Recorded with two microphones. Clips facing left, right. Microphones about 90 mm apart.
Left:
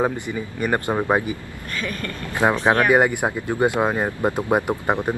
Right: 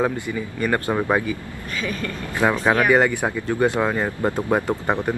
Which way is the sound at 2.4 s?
20° left (ahead or behind).